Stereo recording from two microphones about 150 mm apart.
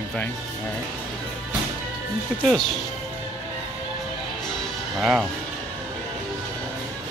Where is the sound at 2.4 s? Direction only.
Centre (ahead or behind).